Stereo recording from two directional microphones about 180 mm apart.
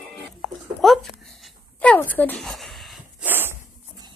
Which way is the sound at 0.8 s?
Centre (ahead or behind).